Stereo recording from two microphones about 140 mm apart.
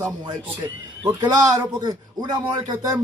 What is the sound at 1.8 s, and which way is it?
Speech, 30° right (ahead or behind).